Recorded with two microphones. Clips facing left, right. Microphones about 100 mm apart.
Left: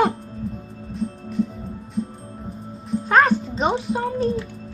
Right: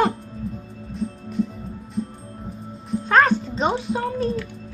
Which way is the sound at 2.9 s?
5° left (ahead or behind).